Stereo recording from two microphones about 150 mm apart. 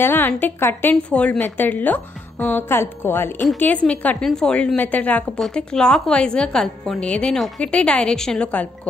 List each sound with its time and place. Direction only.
0.0 s a woman's voice: 15° left (ahead or behind)